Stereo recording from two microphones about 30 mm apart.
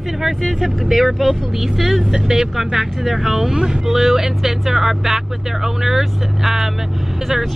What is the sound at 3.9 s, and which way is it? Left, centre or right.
Speech, centre.